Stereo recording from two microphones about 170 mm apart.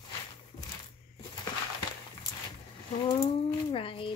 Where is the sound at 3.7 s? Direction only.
30° left (ahead or behind).